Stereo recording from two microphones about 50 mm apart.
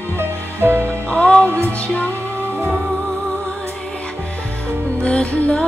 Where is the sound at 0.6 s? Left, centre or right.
Right.